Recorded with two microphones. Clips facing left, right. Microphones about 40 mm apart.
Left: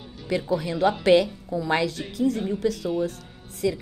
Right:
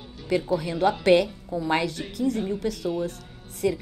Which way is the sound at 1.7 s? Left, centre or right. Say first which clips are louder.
Left 1 dB; left.